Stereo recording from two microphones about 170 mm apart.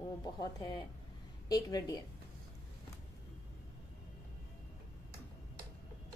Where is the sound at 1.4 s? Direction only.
20° left (ahead or behind).